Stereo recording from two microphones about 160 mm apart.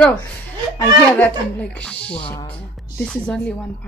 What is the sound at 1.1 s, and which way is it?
A woman's voice, 10° left (ahead or behind).